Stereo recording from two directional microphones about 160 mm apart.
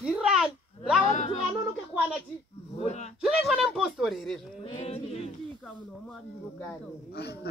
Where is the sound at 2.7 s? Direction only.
45° left (ahead or behind).